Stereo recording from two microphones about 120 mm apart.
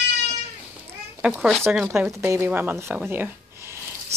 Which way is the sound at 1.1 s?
10° right (ahead or behind).